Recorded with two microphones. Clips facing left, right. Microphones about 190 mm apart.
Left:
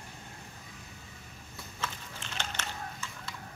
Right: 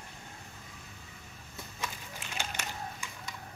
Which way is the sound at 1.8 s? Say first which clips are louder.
Left 1 dB; 10° right (ahead or behind).